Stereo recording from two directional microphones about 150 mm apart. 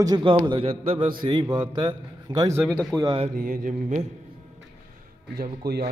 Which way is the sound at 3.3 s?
65° right (ahead or behind).